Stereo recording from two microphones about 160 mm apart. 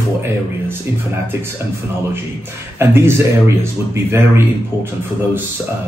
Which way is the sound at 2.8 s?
15° right (ahead or behind).